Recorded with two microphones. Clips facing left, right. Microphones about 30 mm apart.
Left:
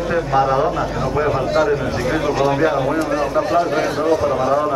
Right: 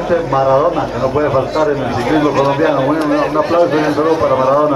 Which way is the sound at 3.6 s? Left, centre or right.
Centre.